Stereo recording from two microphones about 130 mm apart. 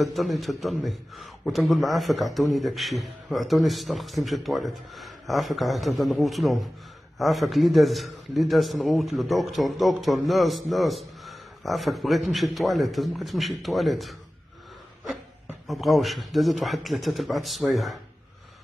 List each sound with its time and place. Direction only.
0.0 s a man's voice: centre (ahead or behind)
15.6 s a man's voice: centre (ahead or behind)